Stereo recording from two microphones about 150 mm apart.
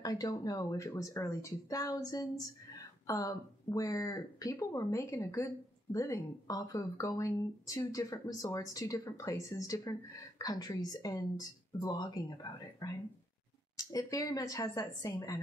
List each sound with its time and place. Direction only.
0.0 s speech: 25° left (ahead or behind)